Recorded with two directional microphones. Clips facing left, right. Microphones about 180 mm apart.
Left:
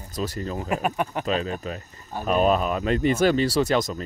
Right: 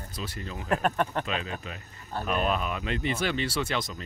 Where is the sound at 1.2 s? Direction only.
40° left (ahead or behind).